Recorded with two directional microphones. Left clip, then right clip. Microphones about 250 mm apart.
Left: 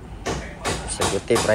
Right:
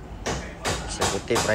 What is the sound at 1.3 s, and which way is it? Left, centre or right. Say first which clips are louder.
Speech: left 4 dB; centre.